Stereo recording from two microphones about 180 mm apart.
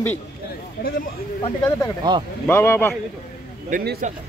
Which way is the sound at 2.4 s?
15° left (ahead or behind).